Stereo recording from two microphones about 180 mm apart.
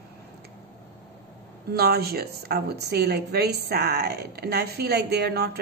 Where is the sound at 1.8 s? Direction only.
60° right (ahead or behind).